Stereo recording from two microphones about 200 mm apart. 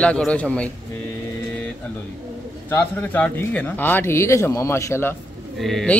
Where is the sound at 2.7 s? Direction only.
10° left (ahead or behind).